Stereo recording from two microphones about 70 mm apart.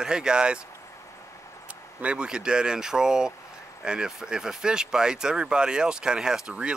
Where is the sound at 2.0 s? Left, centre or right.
Centre.